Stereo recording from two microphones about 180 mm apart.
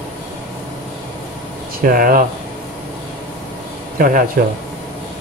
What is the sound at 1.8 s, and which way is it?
Speech, 50° right (ahead or behind).